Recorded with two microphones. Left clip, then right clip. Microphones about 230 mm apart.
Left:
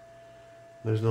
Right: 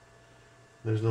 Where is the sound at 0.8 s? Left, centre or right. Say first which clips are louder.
Left 2 dB; left.